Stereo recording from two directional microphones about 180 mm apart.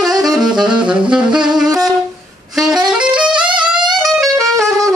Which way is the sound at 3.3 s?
25° right (ahead or behind).